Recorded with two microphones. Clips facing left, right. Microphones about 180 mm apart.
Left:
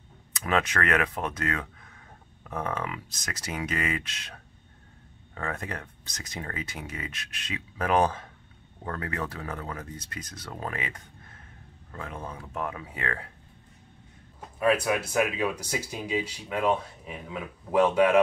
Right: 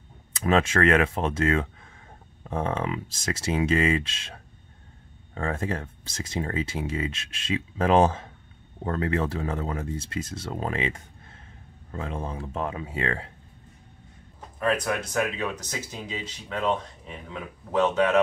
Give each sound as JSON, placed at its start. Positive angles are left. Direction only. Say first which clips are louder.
{"t": 0.3, "sound": "speech", "louder": "right 5 dB", "side_deg": -25}
{"t": 14.6, "sound": "speech", "louder": "left 2 dB", "side_deg": 10}